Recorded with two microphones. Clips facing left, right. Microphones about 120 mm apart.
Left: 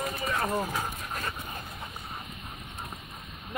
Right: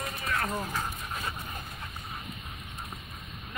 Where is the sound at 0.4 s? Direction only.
10° left (ahead or behind).